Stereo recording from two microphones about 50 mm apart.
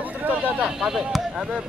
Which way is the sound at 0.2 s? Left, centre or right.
Right.